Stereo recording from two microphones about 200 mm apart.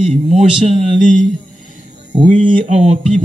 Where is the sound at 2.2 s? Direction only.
40° right (ahead or behind).